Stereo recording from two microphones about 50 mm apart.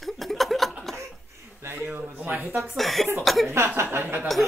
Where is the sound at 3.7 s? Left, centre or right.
Right.